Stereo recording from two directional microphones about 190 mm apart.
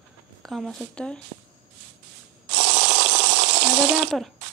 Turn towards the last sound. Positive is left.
turn(degrees=-5)  # may be behind; listen again after turning